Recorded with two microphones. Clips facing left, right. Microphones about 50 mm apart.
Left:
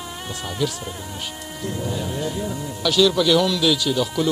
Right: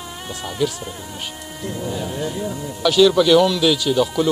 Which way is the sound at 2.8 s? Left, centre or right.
Centre.